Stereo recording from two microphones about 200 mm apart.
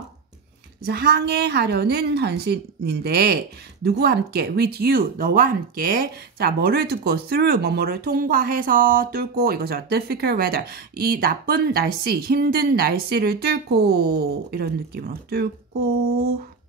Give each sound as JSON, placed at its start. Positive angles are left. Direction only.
{"t": 0.8, "sound": "speech", "side_deg": -50}